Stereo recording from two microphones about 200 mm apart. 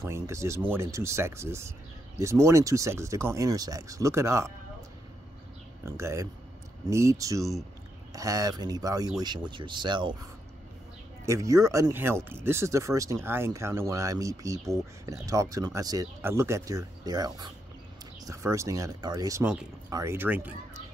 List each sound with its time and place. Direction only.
0.0 s speech: 15° right (ahead or behind)
5.9 s speech: 15° right (ahead or behind)
11.2 s speech: 15° right (ahead or behind)
19.4 s speech: 5° right (ahead or behind)
19.9 s speech: 15° right (ahead or behind)